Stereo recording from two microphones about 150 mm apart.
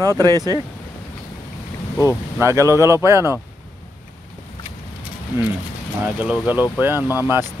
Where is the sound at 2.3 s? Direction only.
20° right (ahead or behind).